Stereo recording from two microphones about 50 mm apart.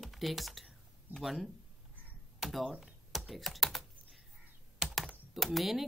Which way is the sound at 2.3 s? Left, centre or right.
Centre.